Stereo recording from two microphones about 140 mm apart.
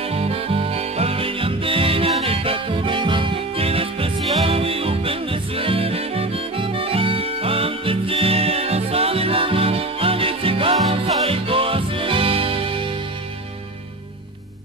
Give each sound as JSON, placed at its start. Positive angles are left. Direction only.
{"t": 0.0, "sound": "music", "side_deg": -45}